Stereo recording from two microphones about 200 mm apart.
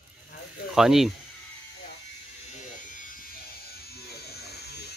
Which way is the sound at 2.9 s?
40° left (ahead or behind).